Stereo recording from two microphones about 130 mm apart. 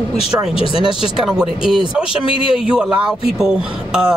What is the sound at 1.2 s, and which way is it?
Speech, 5° right (ahead or behind).